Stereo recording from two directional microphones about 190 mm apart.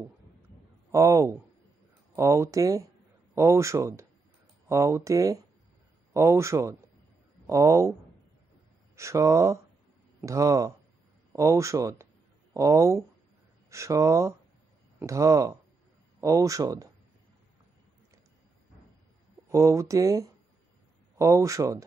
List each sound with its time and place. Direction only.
0.9 s speech: 15° right (ahead or behind)
8.9 s speech: 15° right (ahead or behind)
19.5 s speech: 15° right (ahead or behind)